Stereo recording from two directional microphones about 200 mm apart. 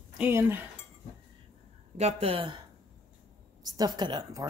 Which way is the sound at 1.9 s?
30° right (ahead or behind).